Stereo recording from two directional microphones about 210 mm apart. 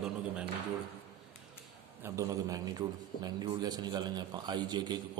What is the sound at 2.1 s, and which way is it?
A man's voice, 15° right (ahead or behind).